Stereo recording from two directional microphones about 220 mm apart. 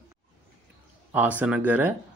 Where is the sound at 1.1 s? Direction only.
5° right (ahead or behind).